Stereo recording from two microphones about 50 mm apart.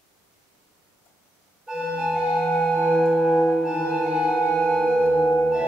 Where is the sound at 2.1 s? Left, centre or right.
Centre.